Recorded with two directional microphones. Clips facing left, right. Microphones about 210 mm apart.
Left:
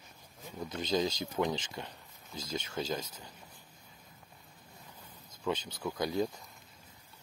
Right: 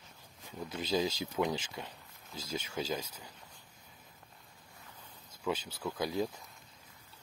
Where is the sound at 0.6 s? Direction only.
5° right (ahead or behind).